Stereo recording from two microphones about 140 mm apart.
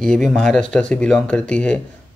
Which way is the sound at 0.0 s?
5° left (ahead or behind).